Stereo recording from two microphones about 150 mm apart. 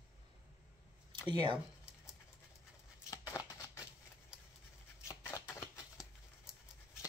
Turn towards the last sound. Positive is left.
turn(degrees=-5)  # may be behind; listen again after turning